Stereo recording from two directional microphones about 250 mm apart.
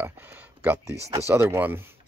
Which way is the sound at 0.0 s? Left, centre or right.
Centre.